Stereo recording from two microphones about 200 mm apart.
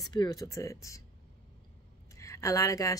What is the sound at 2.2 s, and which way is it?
Speech, 15° left (ahead or behind).